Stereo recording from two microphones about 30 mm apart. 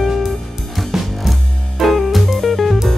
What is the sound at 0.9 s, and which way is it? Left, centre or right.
Music, centre.